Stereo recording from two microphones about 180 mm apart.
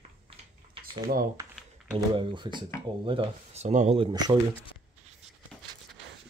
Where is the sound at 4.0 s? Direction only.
20° right (ahead or behind).